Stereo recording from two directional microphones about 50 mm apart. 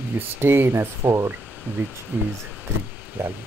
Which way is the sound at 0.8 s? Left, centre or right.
Right.